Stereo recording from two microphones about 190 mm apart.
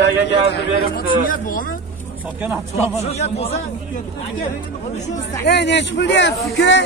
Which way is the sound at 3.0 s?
35° left (ahead or behind).